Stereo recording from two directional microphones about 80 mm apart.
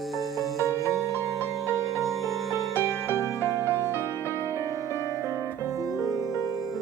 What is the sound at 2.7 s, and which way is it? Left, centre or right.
Music, left.